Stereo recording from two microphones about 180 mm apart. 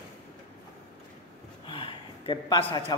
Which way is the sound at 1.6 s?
30° left (ahead or behind).